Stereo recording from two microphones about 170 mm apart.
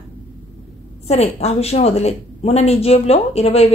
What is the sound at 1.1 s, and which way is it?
Speech, 40° left (ahead or behind).